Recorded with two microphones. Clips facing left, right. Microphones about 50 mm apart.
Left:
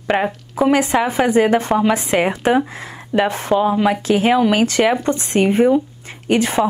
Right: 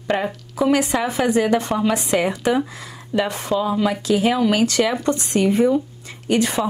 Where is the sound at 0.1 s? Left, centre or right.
Left.